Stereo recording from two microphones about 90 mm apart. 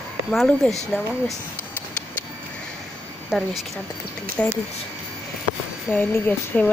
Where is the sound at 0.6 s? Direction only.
15° left (ahead or behind).